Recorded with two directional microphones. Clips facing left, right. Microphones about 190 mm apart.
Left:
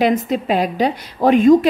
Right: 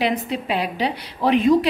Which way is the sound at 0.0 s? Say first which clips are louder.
Left 6 dB; 45° left (ahead or behind).